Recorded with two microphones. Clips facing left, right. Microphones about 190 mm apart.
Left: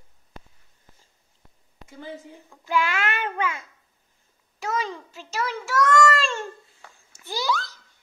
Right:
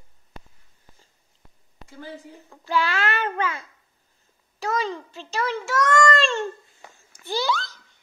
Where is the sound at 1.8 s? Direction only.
20° left (ahead or behind).